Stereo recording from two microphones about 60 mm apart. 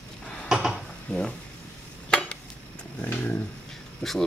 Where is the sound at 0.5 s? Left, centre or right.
Centre.